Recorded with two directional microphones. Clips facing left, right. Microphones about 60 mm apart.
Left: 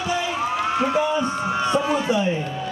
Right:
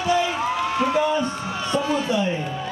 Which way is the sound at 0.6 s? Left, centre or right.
Left.